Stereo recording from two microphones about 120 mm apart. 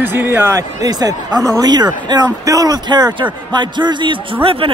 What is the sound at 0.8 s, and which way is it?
Speech, 30° right (ahead or behind).